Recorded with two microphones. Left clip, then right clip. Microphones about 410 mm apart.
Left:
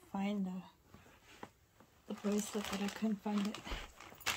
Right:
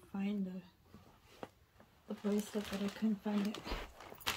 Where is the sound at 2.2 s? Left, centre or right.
Centre.